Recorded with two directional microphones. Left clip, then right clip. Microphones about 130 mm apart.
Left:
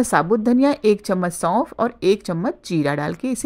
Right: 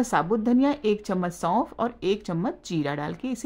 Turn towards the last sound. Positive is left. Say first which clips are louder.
# left 7 dB
turn(degrees=30)  # may be behind; listen again after turning